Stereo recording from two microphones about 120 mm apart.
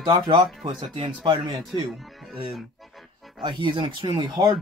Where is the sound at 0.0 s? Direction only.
40° right (ahead or behind).